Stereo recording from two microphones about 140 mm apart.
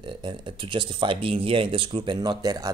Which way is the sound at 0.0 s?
35° right (ahead or behind).